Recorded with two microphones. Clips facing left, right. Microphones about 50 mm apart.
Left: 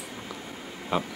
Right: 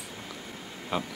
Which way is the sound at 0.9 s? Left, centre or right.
Centre.